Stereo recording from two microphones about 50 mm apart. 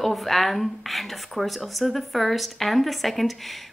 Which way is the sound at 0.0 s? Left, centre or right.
Centre.